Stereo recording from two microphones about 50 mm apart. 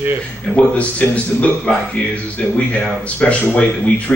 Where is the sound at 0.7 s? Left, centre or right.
Left.